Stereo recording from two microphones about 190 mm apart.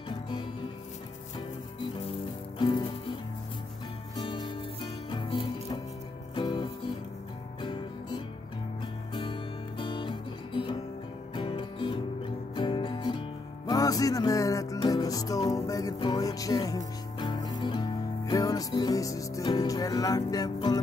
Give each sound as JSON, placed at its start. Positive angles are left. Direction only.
{"t": 2.6, "sound": "music", "side_deg": 25}
{"t": 4.2, "sound": "music", "side_deg": 25}